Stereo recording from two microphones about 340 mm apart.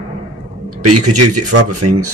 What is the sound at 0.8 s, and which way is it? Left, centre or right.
Speech, right.